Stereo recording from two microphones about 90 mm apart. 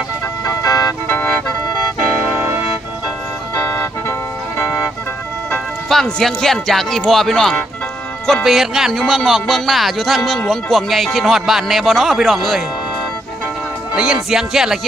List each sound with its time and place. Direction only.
1.0 s music: 20° left (ahead or behind)
3.5 s music: 25° left (ahead or behind)
5.9 s speech: 5° left (ahead or behind)
13.9 s speech: 5° right (ahead or behind)